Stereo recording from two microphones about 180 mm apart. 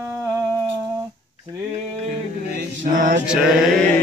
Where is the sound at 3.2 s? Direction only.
5° right (ahead or behind).